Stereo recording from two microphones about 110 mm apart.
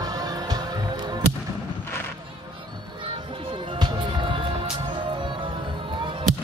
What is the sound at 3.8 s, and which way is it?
Music, 50° right (ahead or behind).